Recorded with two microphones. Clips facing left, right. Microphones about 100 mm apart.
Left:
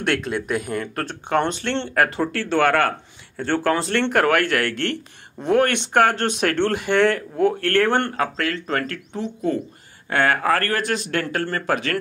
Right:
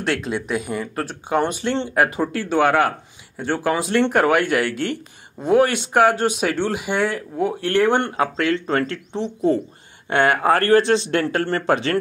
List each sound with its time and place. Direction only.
0.1 s speech: centre (ahead or behind); by 12.0 s 30° right (ahead or behind)